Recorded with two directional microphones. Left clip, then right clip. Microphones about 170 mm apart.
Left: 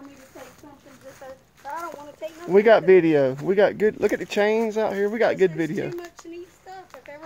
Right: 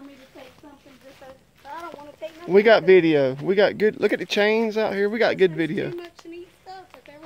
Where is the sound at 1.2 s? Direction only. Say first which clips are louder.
Left 6 dB; 30° left (ahead or behind).